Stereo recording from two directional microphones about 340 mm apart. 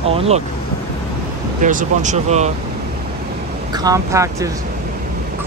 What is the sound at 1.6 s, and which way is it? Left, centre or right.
Speech, right.